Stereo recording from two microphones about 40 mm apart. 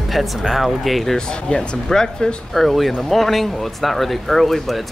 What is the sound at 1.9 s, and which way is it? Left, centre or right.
Speech, centre.